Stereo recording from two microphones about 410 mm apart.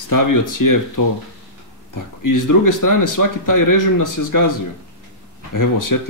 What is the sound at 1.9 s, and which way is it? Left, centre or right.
Speech, left.